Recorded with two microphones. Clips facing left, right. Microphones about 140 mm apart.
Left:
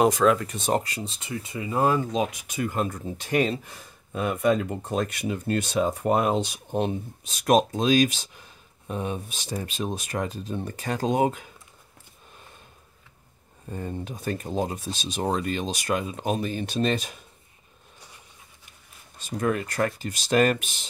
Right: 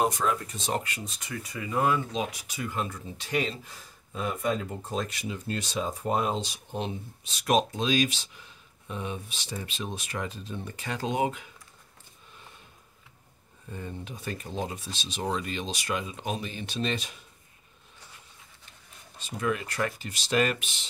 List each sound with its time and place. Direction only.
0.0 s speech: 90° left
0.7 s speech: 35° left (ahead or behind)
2.1 s speech: 50° left (ahead or behind)
13.7 s speech: 40° left (ahead or behind)
19.2 s speech: 45° left (ahead or behind)